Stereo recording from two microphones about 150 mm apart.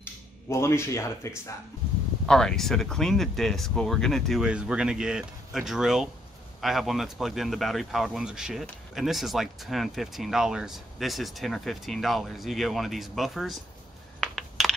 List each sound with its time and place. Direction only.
0.0 s speech: 20° left (ahead or behind)
2.2 s a man's voice: 5° left (ahead or behind)
14.2 s computer keyboard: centre (ahead or behind)